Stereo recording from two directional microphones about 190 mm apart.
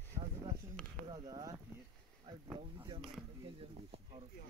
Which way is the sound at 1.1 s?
20° right (ahead or behind).